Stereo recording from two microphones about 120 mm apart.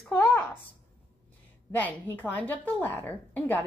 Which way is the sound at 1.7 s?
15° left (ahead or behind).